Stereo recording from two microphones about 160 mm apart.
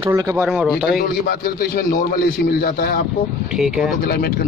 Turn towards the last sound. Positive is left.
turn(degrees=70)  # may be behind; listen again after turning